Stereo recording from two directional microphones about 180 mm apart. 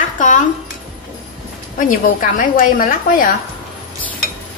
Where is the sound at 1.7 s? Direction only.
50° left (ahead or behind).